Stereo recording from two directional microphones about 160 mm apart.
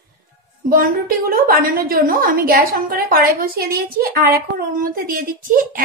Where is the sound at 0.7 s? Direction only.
65° right (ahead or behind).